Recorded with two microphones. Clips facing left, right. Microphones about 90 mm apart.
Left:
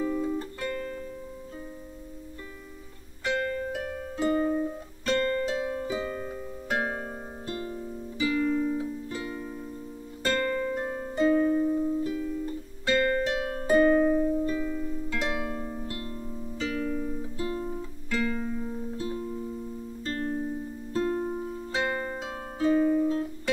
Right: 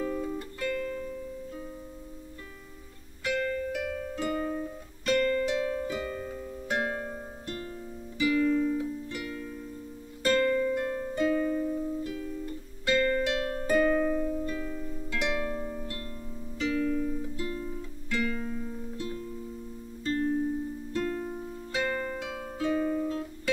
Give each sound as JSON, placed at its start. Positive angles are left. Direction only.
{"t": 0.0, "sound": "music", "side_deg": 10}
{"t": 0.4, "sound": "music", "side_deg": 25}
{"t": 3.7, "sound": "harp", "side_deg": 35}
{"t": 5.0, "sound": "music", "side_deg": 30}
{"t": 10.2, "sound": "music", "side_deg": 30}
{"t": 12.8, "sound": "music", "side_deg": 35}
{"t": 13.4, "sound": "harp", "side_deg": 20}
{"t": 13.7, "sound": "music", "side_deg": 20}
{"t": 14.5, "sound": "music", "side_deg": 10}
{"t": 18.4, "sound": "music", "side_deg": 10}
{"t": 20.1, "sound": "music", "side_deg": 40}
{"t": 20.9, "sound": "music", "side_deg": 20}
{"t": 22.8, "sound": "music", "side_deg": 10}
{"t": 23.0, "sound": "music", "side_deg": 25}